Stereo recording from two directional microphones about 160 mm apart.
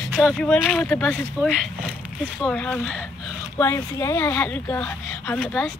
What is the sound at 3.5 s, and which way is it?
Speech, 15° left (ahead or behind).